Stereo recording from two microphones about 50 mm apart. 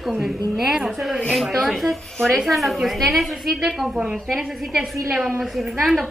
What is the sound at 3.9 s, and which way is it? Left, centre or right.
Speech, right.